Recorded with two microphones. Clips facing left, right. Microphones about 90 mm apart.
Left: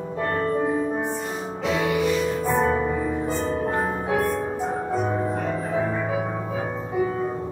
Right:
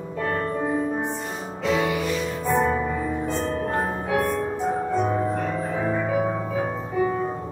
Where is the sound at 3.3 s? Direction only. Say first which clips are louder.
Left 1 dB; centre (ahead or behind).